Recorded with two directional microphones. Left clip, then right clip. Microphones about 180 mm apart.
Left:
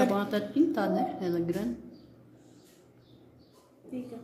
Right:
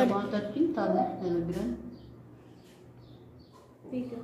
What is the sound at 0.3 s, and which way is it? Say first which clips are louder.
A woman's voice: left 2 dB; 75° left (ahead or behind).